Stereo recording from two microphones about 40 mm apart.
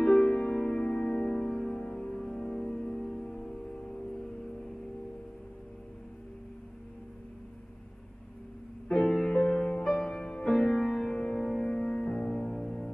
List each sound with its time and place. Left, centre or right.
0.0 s music: centre
9.1 s music: centre
10.5 s music: centre
11.1 s music: left